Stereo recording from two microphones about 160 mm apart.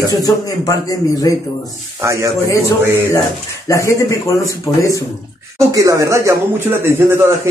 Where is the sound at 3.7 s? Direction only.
20° left (ahead or behind).